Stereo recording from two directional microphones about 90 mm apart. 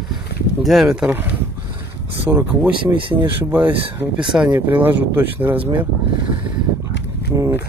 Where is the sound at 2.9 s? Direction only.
65° right (ahead or behind).